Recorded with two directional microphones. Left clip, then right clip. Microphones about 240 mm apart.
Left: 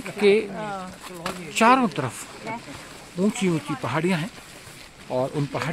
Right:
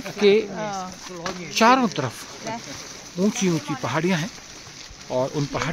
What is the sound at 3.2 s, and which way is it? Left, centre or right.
Speech, centre.